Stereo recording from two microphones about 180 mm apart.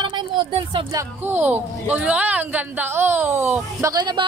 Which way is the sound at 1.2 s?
10° right (ahead or behind).